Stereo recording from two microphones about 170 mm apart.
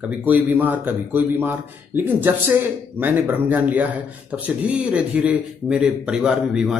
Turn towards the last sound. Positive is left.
turn(degrees=-5)  # may be behind; listen again after turning